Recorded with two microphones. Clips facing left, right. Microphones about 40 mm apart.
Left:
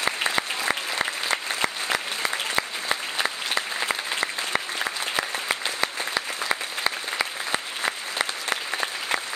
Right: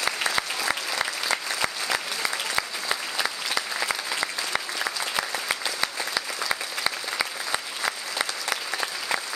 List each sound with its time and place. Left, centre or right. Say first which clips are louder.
0.0 s applause: left 1 dB; left
7.8 s applause: left 1 dB; left